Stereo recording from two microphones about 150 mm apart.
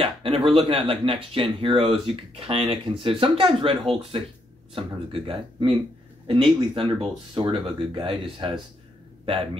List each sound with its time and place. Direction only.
0.0 s speech: 40° right (ahead or behind)